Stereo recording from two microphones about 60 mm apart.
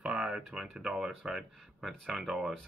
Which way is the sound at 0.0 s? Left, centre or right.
Centre.